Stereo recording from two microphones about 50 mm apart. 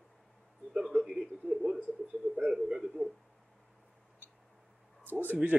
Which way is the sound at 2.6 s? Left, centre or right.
Centre.